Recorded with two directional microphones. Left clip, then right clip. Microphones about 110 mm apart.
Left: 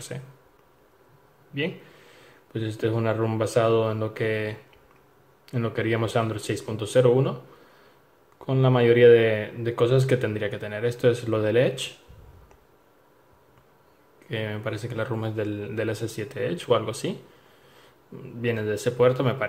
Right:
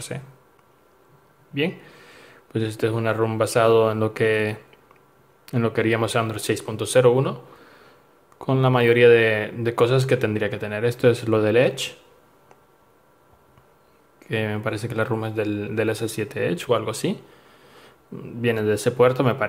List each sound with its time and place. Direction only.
1.5 s speech: 30° right (ahead or behind)
8.4 s speech: 40° right (ahead or behind)
14.2 s speech: 30° right (ahead or behind)